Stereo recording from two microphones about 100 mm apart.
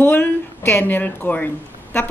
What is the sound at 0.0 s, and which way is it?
A woman's voice, 20° left (ahead or behind).